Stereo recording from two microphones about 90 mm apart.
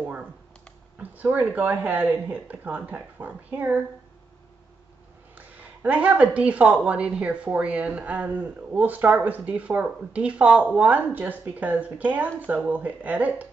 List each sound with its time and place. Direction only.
0.0 s a sound: 15° right (ahead or behind)
0.9 s speech: 20° right (ahead or behind)
5.3 s speech: 20° right (ahead or behind)